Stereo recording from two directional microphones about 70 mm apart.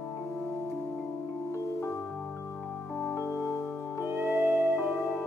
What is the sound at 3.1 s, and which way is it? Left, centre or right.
Music, left.